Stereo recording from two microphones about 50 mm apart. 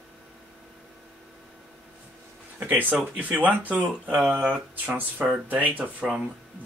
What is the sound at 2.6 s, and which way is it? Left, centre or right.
Speech, right.